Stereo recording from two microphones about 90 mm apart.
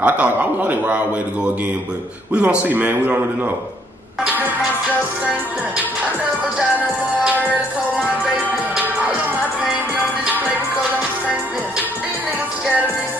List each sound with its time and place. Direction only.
0.0 s a man's voice: 15° right (ahead or behind)